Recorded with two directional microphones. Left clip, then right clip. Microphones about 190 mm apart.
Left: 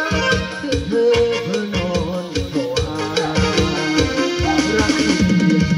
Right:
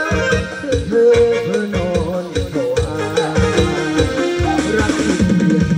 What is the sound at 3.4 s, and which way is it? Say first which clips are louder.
Music: right 2 dB; 45° left (ahead or behind).